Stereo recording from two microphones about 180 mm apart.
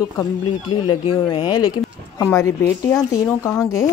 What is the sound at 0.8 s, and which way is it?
Speech, 25° left (ahead or behind).